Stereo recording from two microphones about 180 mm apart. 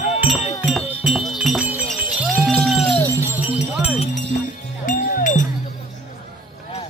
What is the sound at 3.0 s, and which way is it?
Music, 15° right (ahead or behind).